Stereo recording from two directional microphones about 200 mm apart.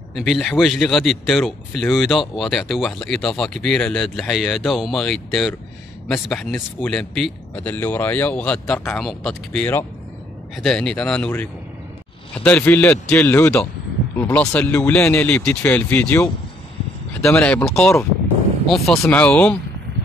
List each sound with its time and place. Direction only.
0.1 s a man's voice: centre (ahead or behind)
12.4 s a man's voice: 5° left (ahead or behind)